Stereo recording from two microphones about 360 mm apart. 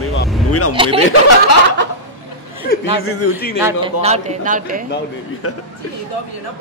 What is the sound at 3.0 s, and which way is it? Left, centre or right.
Speech, left.